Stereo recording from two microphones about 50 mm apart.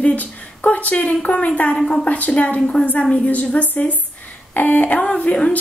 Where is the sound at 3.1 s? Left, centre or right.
Left.